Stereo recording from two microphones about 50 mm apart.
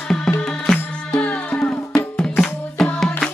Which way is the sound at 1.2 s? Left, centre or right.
Left.